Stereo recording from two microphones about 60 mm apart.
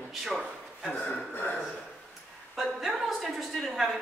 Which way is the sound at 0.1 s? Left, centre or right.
Centre.